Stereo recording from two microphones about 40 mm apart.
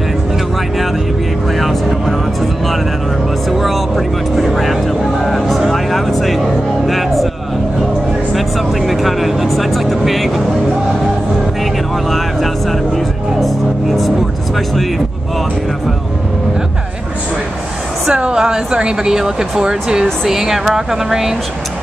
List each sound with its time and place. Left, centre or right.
1.6 s speech: centre
3.4 s speech: centre
8.3 s speech: centre
12.9 s speech: centre
18.0 s speech: centre